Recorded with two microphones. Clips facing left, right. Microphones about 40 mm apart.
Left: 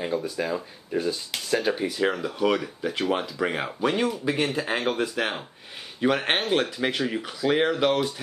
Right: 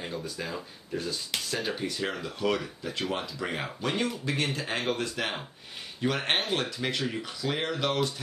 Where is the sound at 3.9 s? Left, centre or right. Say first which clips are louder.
Left 4 dB; centre.